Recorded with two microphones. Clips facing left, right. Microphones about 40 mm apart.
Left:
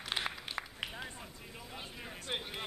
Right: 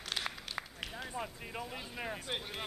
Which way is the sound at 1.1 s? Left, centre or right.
Right.